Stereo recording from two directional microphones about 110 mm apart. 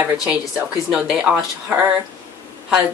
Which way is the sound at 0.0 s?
10° right (ahead or behind).